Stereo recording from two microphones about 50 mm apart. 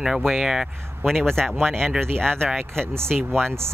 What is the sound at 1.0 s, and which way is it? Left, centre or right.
Speech, centre.